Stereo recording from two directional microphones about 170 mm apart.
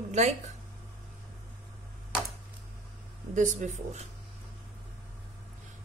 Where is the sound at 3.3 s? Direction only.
45° right (ahead or behind).